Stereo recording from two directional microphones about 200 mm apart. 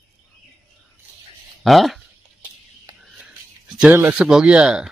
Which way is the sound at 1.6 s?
Centre (ahead or behind).